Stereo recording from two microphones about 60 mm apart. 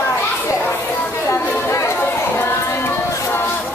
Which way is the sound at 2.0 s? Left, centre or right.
Left.